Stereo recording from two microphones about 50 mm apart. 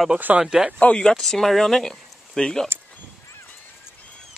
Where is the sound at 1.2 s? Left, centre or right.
Centre.